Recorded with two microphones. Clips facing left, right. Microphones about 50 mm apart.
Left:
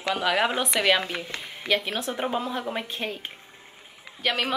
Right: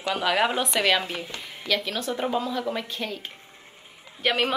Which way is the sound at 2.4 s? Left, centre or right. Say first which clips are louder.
Right 1 dB; left.